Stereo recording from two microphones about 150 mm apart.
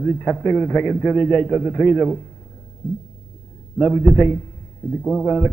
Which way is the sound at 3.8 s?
Centre (ahead or behind).